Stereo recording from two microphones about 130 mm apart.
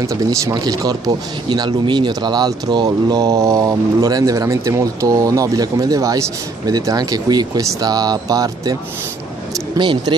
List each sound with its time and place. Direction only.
0.0 s speech: 25° right (ahead or behind)
9.8 s speech: 35° right (ahead or behind)